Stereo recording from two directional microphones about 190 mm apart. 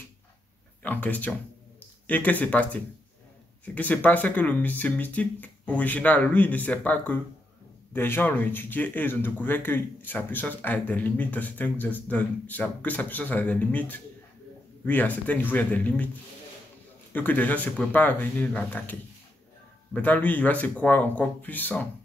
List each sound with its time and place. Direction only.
0.8 s speech: 10° left (ahead or behind)
17.1 s speech: 10° left (ahead or behind)